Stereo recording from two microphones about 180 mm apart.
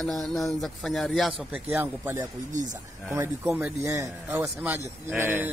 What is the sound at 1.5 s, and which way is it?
A man's voice, 10° right (ahead or behind).